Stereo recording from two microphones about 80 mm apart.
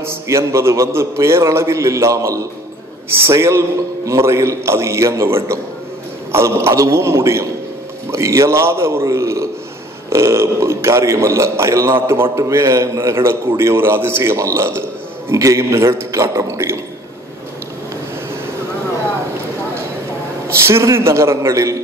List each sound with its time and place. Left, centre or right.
0.0 s a man's voice: right
20.4 s a man's voice: right